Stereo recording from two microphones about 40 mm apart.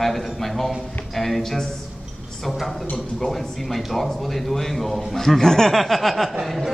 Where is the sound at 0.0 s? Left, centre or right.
Centre.